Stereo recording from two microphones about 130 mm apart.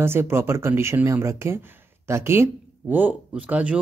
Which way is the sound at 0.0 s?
20° right (ahead or behind).